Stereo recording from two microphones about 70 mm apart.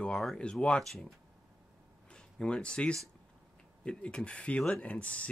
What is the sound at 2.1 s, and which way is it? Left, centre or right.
Speech, centre.